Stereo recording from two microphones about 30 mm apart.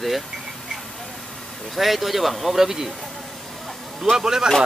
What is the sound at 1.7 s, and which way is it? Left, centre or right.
Speech, centre.